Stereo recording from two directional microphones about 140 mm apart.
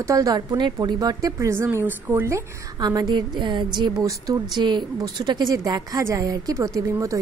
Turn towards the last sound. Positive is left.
turn(degrees=-20)  # may be behind; listen again after turning